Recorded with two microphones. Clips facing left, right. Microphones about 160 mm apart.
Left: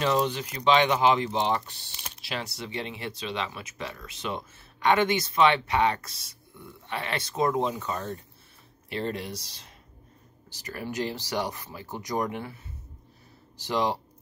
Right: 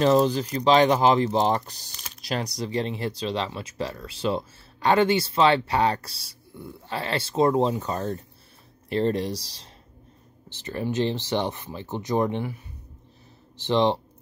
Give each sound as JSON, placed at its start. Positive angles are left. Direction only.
{"t": 0.0, "sound": "speech", "side_deg": -40}
{"t": 13.6, "sound": "speech", "side_deg": -25}